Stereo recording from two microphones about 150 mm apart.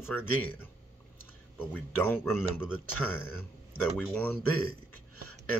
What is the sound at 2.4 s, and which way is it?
Speech, 5° right (ahead or behind).